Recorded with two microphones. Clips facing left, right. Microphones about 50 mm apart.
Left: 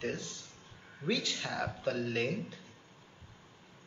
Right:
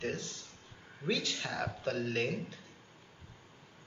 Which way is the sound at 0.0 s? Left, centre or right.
Centre.